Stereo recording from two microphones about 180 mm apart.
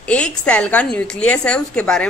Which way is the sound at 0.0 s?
5° left (ahead or behind).